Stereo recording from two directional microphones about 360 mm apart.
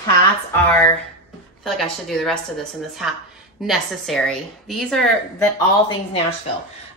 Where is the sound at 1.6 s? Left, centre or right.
Centre.